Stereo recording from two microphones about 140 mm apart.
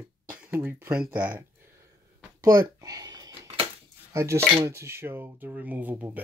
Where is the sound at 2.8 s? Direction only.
25° right (ahead or behind).